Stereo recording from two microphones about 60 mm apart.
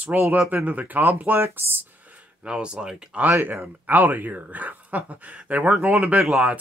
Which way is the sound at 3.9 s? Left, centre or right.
Right.